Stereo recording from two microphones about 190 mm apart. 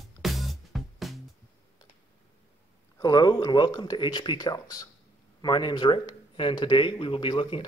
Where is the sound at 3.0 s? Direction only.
20° left (ahead or behind).